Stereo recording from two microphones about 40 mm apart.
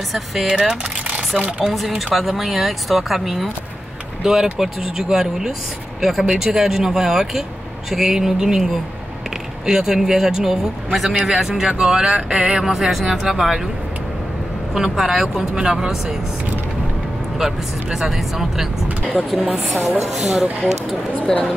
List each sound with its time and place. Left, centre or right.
0.1 s speech: centre
0.5 s typing: centre
2.1 s speech: centre
11.8 s a sound: right
12.6 s speech: centre
14.7 s speech: centre
15.5 s a sound: right
17.9 s speech: centre
20.9 s speech: centre